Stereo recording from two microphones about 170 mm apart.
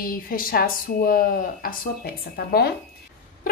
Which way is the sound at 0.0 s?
55° left (ahead or behind).